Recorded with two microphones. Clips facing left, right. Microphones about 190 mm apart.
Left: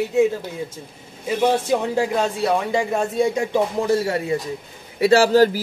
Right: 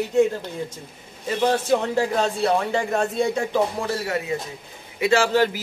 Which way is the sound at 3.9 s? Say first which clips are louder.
Left 5 dB; 30° left (ahead or behind).